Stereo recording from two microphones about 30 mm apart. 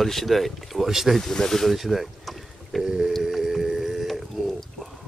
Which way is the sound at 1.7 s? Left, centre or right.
Centre.